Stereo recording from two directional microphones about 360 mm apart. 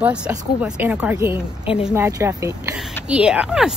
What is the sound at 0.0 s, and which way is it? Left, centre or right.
Speech, centre.